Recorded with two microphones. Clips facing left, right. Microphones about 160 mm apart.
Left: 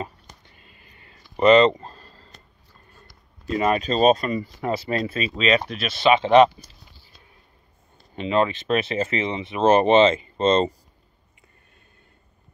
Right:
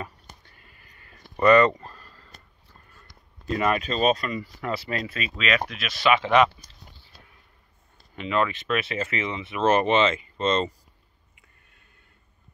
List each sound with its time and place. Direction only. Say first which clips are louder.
0.5 s a sound: left 3 dB; 20° left (ahead or behind)
3.5 s speech: left 4 dB; 30° left (ahead or behind); by 4.4 s 45° left (ahead or behind)
4.4 s speech: left 4 dB; 30° left (ahead or behind)
8.2 s speech: left 4 dB; 25° left (ahead or behind)